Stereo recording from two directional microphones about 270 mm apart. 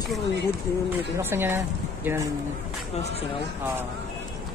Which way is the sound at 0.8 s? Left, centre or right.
Centre.